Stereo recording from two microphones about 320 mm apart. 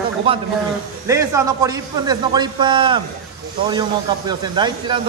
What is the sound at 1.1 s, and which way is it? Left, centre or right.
Speech, centre.